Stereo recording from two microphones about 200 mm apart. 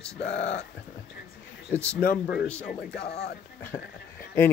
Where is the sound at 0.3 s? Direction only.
35° left (ahead or behind).